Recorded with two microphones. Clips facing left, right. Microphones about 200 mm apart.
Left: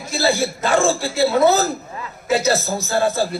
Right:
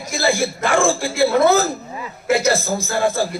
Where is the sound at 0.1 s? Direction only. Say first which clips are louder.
Even; 15° right (ahead or behind).